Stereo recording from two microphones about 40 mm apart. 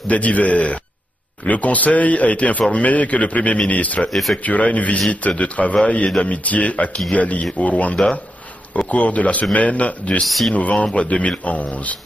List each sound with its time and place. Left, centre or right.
0.1 s speech: left
4.1 s speech: centre
4.4 s speech: left
10.2 s speech: centre
10.5 s speech: left